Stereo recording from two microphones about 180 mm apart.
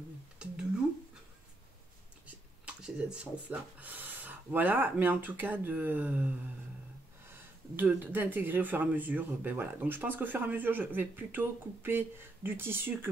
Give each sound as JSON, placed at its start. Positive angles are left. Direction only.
{"t": 2.2, "sound": "speech", "side_deg": -5}